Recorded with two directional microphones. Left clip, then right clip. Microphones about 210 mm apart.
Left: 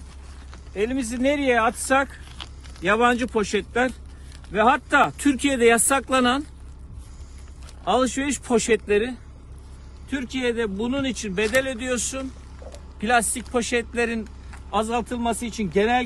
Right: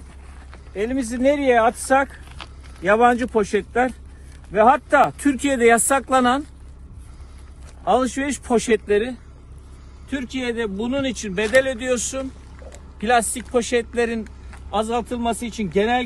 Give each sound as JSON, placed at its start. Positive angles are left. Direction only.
{"t": 0.5, "sound": "speech", "side_deg": 0}
{"t": 7.8, "sound": "speech", "side_deg": 0}